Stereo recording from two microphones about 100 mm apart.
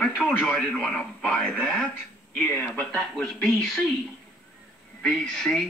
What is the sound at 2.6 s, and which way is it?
Speech, 15° left (ahead or behind).